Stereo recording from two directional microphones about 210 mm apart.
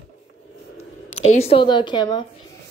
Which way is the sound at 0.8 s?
30° left (ahead or behind).